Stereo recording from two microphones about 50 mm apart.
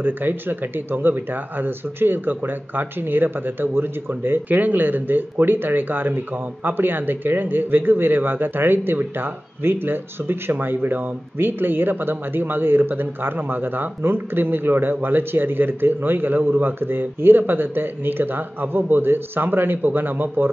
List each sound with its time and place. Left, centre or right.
0.0 s speech: right